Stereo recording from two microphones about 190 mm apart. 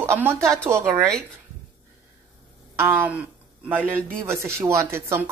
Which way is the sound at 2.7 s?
10° right (ahead or behind).